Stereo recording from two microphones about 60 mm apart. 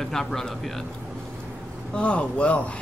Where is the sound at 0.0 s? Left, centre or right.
Centre.